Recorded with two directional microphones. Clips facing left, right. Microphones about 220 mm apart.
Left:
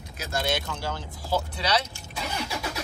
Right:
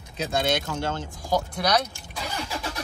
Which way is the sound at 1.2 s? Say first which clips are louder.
Right 3 dB; 15° right (ahead or behind).